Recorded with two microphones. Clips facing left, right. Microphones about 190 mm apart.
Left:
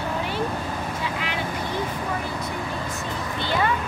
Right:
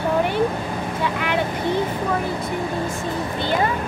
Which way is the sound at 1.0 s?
60° right (ahead or behind).